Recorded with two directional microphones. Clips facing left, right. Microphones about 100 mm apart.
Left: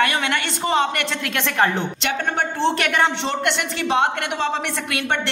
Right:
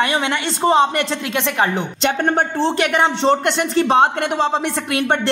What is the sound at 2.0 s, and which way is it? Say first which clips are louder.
Speech: right 8 dB; 35° right (ahead or behind).